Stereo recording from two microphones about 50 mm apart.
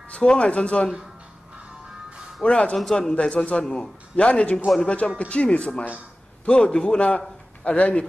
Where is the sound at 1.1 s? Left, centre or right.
Centre.